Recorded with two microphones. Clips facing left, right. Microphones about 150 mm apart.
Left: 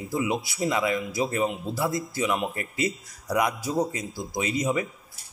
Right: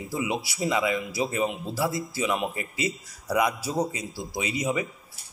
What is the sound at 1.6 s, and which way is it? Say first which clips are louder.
A man's voice: even; centre (ahead or behind).